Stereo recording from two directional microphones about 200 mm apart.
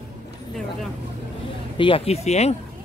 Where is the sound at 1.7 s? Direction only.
25° left (ahead or behind).